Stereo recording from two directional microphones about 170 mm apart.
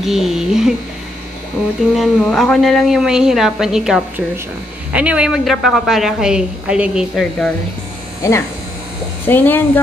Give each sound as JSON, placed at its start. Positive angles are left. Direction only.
{"t": 0.0, "sound": "a woman's voice", "side_deg": 0}
{"t": 2.0, "sound": "a woman's voice", "side_deg": 0}
{"t": 8.2, "sound": "speech", "side_deg": 15}